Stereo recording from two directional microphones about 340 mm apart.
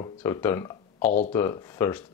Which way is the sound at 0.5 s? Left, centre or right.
Centre.